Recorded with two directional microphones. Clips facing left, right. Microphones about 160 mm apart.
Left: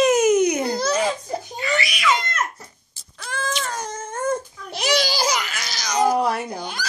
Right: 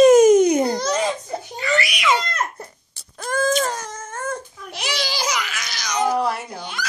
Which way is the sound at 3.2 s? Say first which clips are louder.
Right 8 dB; 45° right (ahead or behind).